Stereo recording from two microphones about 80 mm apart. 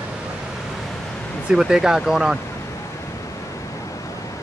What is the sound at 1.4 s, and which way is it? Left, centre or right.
Speech, centre.